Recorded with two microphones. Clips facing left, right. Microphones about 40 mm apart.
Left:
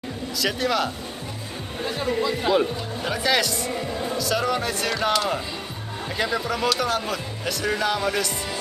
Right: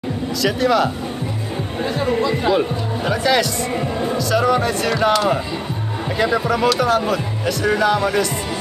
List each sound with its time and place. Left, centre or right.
0.4 s speech: centre
3.7 s music: right
4.2 s speech: centre